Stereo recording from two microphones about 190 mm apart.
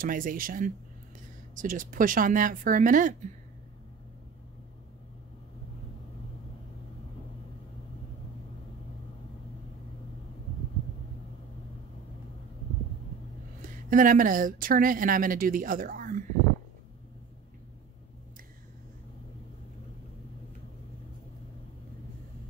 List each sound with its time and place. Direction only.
0.0 s speech: 45° right (ahead or behind)
13.6 s speech: 45° right (ahead or behind)